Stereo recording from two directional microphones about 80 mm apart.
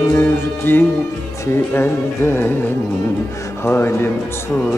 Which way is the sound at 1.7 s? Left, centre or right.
Left.